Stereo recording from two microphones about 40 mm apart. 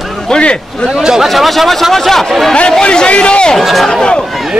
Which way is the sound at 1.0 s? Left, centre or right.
Centre.